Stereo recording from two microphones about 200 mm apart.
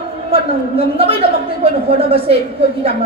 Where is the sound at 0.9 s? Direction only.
30° right (ahead or behind).